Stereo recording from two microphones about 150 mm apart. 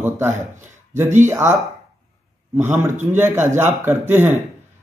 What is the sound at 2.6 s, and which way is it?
Speech, 15° right (ahead or behind).